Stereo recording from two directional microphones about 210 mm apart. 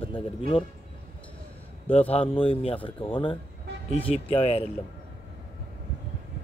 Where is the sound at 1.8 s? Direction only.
25° left (ahead or behind).